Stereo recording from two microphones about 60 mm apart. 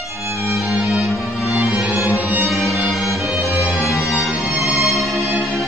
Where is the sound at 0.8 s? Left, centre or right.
Centre.